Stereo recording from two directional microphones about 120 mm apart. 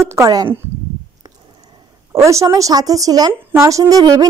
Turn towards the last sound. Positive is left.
turn(degrees=-30)  # may be behind; listen again after turning